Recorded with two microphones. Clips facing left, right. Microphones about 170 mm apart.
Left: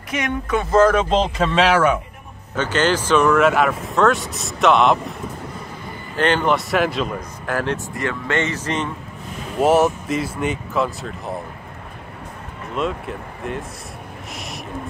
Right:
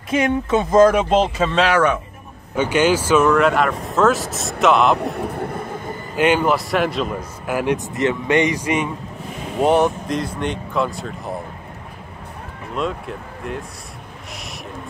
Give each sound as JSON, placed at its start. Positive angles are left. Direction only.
{"t": 0.1, "sound": "speech", "side_deg": -25}
{"t": 0.7, "sound": "speech", "side_deg": -10}
{"t": 2.5, "sound": "speech", "side_deg": -10}
{"t": 5.1, "sound": "vehicle", "side_deg": -55}
{"t": 6.1, "sound": "speech", "side_deg": -10}
{"t": 9.6, "sound": "speech", "side_deg": 5}
{"t": 12.7, "sound": "speech", "side_deg": 0}